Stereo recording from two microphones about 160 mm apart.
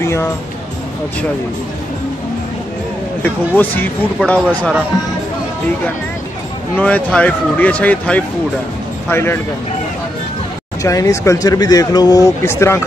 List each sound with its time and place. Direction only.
0.0 s speech: 15° left (ahead or behind)
3.2 s speech: 10° left (ahead or behind)
6.8 s speech: 10° left (ahead or behind)
10.8 s a man's voice: 20° left (ahead or behind)